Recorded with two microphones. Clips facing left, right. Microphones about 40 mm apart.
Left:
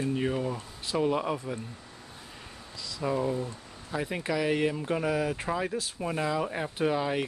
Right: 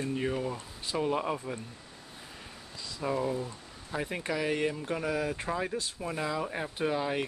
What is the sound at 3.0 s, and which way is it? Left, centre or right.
Speech, centre.